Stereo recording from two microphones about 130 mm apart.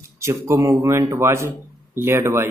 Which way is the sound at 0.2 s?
20° right (ahead or behind).